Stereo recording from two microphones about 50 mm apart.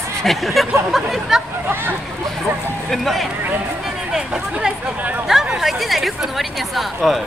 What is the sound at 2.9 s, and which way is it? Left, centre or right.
Speech, centre.